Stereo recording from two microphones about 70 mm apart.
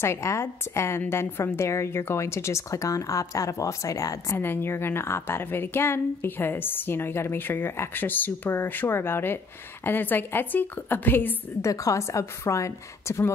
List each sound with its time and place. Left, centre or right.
0.0 s a woman's voice: left
4.4 s a woman's voice: left
11.6 s a woman's voice: left